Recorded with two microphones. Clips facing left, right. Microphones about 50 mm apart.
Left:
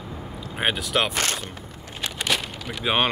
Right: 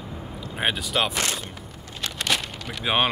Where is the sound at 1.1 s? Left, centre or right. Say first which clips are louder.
Left 1 dB; left.